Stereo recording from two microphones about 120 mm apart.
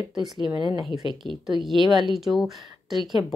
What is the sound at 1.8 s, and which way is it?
Speech, 40° right (ahead or behind).